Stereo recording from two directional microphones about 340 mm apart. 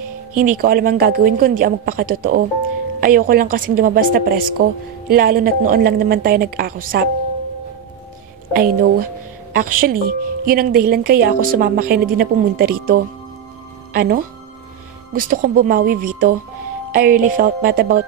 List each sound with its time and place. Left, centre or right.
0.4 s a woman's voice: right
8.5 s a woman's voice: right